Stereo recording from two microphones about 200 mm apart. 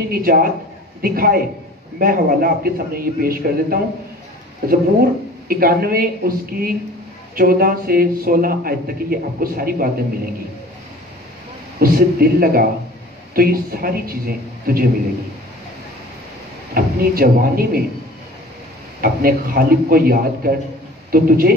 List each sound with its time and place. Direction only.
0.1 s a man's voice: 45° right (ahead or behind)
11.8 s a man's voice: 45° right (ahead or behind)
16.7 s a man's voice: 50° right (ahead or behind)
18.9 s a man's voice: 45° right (ahead or behind)